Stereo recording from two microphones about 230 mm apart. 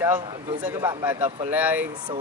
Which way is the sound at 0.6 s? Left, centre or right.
Centre.